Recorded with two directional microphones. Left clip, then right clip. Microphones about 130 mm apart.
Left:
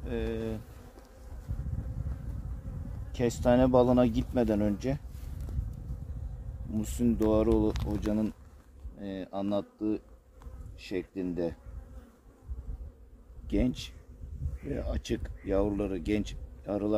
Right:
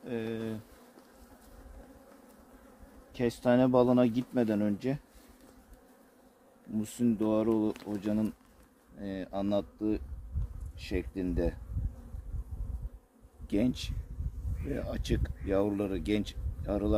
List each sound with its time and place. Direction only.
0.0 s bee: 25° left (ahead or behind)
3.1 s speech: 55° left (ahead or behind)
6.8 s speech: 55° left (ahead or behind)
7.9 s speech: 30° left (ahead or behind)
8.9 s speech: 5° right (ahead or behind)
13.5 s speech: 10° right (ahead or behind)